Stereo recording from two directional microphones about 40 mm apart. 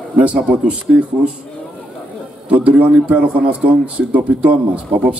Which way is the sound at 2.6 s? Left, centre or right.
Right.